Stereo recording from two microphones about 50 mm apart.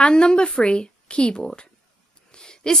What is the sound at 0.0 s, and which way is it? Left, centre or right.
A woman's voice, centre.